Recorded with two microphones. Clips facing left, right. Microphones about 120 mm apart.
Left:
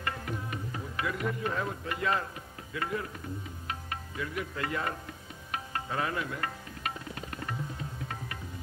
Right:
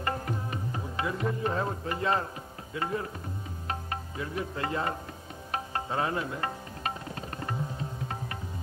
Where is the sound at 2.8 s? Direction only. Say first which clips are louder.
Right 2 dB; 30° right (ahead or behind).